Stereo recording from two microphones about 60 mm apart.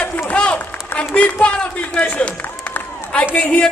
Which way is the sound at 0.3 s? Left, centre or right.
Left.